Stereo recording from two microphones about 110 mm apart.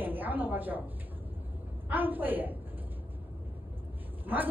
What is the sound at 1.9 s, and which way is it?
Speech, 15° right (ahead or behind).